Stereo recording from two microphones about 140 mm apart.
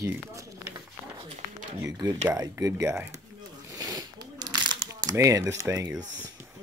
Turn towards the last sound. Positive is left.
turn(degrees=-20)  # may be behind; listen again after turning